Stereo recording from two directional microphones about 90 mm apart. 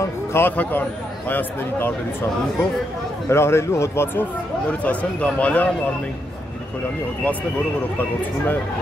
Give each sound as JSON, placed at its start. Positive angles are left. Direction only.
{"t": 0.0, "sound": "speech", "side_deg": 25}
{"t": 3.3, "sound": "speech", "side_deg": 30}